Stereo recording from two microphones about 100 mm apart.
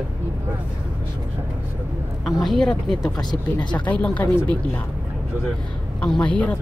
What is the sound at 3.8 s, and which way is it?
Speech, 15° left (ahead or behind).